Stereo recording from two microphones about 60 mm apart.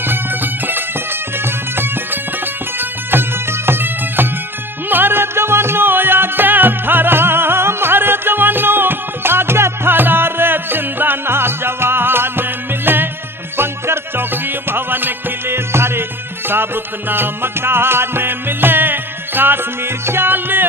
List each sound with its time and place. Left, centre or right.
0.0 s music: right
2.8 s music: right